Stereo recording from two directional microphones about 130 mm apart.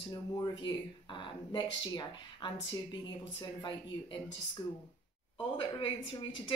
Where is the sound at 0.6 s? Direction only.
35° left (ahead or behind).